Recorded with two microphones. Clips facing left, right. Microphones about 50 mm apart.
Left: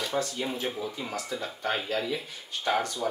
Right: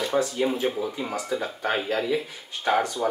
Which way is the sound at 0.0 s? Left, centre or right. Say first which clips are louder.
Right 6 dB; centre.